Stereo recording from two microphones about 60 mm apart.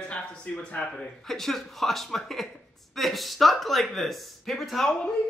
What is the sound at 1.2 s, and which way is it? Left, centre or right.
Speech, centre.